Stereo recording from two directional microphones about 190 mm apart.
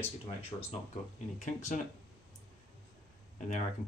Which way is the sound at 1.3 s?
40° left (ahead or behind).